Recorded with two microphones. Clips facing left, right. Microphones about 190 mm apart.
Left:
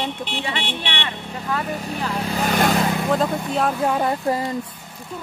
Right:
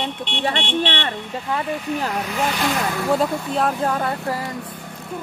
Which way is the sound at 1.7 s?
35° left (ahead or behind).